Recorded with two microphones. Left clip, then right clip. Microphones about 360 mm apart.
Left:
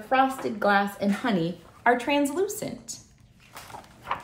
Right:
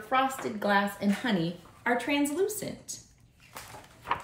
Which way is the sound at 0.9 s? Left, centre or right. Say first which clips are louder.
Left 4 dB; centre.